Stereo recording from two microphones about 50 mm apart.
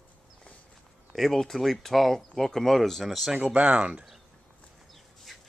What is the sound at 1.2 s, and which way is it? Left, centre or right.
Speech, centre.